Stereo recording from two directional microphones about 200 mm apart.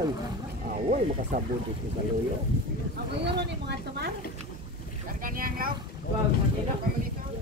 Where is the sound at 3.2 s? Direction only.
60° right (ahead or behind).